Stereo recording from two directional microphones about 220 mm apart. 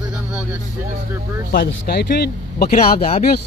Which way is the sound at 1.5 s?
45° left (ahead or behind).